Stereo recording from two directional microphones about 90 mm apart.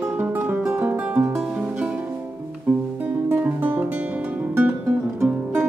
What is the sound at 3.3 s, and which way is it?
Music, 20° right (ahead or behind).